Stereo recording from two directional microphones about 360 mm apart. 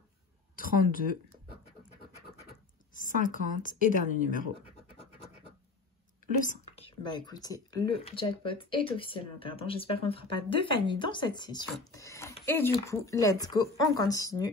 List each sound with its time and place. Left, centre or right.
0.6 s scratch: left
3.0 s a woman's voice: left
6.4 s speech: centre